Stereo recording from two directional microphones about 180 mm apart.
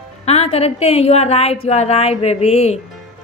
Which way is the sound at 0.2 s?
35° left (ahead or behind).